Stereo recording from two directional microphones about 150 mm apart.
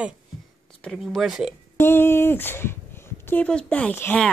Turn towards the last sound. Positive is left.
turn(degrees=10)  # may be behind; listen again after turning